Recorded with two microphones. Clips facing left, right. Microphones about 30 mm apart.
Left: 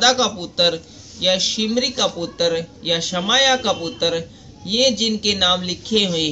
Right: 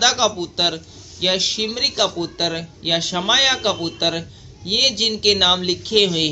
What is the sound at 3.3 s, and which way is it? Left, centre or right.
A man's voice, right.